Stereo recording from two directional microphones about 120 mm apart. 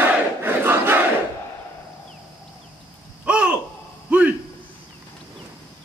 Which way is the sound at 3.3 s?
10° right (ahead or behind).